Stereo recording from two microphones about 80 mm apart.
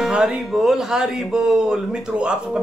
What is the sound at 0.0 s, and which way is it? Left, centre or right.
Speech, centre.